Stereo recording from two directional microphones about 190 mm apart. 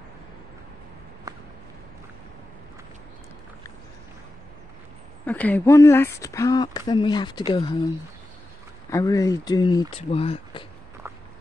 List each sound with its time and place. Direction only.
1.3 s a sound: 20° right (ahead or behind)
5.2 s speech: 10° left (ahead or behind); by 7.9 s 25° left (ahead or behind)
8.9 s speech: 20° left (ahead or behind)